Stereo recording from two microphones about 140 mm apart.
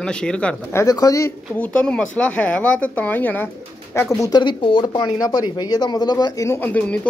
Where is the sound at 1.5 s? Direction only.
10° left (ahead or behind).